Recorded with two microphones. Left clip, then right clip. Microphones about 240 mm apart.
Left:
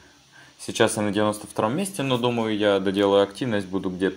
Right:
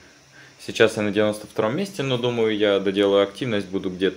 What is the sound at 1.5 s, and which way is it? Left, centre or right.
Speech, centre.